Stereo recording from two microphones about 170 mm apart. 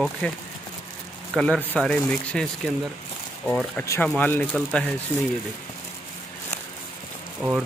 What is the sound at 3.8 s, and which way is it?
Speech, 15° left (ahead or behind).